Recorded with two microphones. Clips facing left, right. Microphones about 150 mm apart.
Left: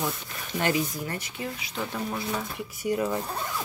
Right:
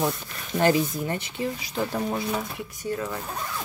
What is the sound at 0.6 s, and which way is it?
Speech, 35° right (ahead or behind).